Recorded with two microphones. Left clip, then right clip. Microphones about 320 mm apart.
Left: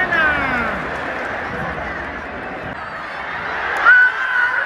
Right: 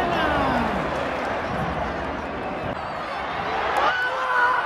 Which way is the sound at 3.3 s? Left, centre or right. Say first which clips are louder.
Left 2 dB; centre.